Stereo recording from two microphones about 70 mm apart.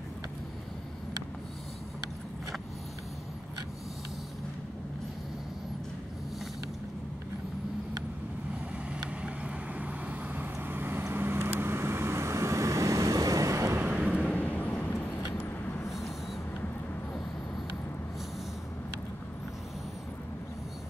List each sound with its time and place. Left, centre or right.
8.7 s vehicle: centre; by 13.7 s right
13.7 s vehicle: centre
14.2 s vehicle: left
15.3 s vehicle: left